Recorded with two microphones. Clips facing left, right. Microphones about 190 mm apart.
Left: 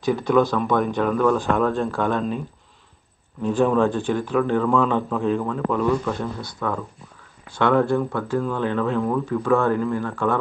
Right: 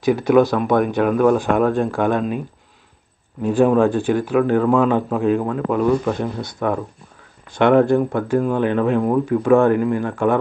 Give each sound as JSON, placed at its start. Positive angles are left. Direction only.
{"t": 0.0, "sound": "speech", "side_deg": -10}
{"t": 3.4, "sound": "speech", "side_deg": -10}
{"t": 5.8, "sound": "a man's voice", "side_deg": -20}